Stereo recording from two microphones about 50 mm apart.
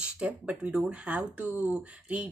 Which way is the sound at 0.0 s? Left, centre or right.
Right.